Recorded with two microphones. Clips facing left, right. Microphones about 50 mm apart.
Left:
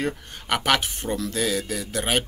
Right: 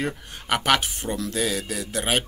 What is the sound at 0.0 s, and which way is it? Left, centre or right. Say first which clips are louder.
Speech: left 1 dB; centre.